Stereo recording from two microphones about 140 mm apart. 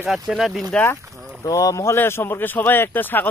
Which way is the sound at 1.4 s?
25° left (ahead or behind).